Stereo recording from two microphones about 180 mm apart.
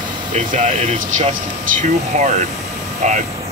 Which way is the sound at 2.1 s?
40° right (ahead or behind).